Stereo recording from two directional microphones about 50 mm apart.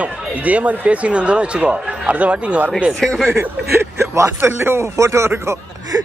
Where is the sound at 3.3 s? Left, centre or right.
Right.